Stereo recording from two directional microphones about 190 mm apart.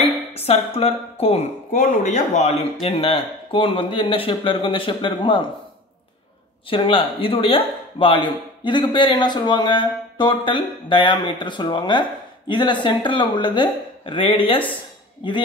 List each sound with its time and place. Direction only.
0.0 s speech: 35° left (ahead or behind)
1.7 s speech: 45° left (ahead or behind); by 5.4 s 25° left (ahead or behind)
6.7 s speech: 25° left (ahead or behind)